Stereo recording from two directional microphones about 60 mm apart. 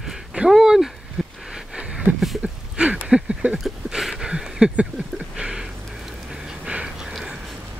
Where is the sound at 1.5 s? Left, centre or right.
Centre.